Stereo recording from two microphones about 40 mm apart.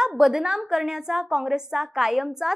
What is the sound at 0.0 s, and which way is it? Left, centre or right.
A woman's voice, centre.